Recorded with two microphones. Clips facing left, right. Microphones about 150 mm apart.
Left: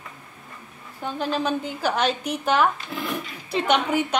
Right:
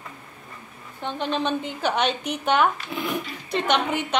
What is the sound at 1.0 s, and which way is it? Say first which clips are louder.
A woman's voice: even; 5° left (ahead or behind).